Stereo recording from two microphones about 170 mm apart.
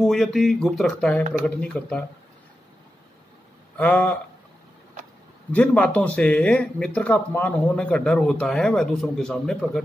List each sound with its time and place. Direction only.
0.0 s speech: centre (ahead or behind)
3.7 s speech: 10° left (ahead or behind)
5.5 s speech: 10° left (ahead or behind)